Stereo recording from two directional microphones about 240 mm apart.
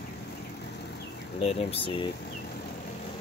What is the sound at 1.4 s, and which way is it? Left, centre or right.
Speech, left.